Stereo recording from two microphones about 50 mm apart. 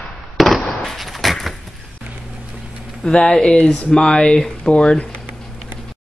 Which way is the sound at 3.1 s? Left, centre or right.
Centre.